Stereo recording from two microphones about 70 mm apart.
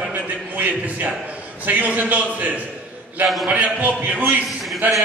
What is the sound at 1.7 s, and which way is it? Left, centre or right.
Speech, right.